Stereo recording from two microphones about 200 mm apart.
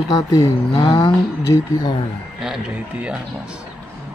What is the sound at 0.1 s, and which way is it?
Speech, 20° left (ahead or behind).